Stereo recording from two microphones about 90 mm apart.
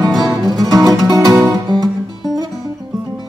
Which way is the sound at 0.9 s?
40° right (ahead or behind).